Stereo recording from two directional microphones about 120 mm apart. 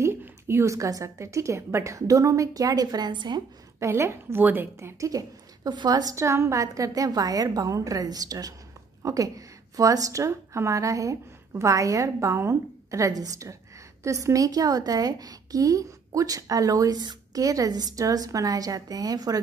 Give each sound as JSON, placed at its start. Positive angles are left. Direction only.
{"t": 0.0, "sound": "a woman's voice", "side_deg": -20}
{"t": 3.8, "sound": "a woman's voice", "side_deg": -20}